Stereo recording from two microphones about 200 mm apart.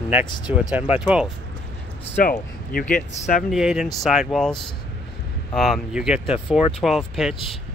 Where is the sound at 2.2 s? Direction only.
45° left (ahead or behind).